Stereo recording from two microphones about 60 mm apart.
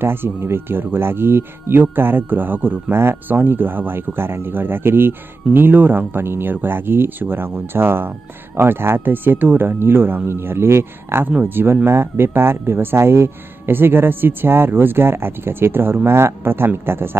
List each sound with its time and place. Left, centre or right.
0.0 s speech: right
11.2 s speech: right